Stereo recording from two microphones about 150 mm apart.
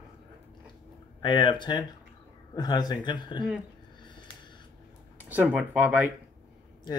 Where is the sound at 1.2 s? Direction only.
30° left (ahead or behind).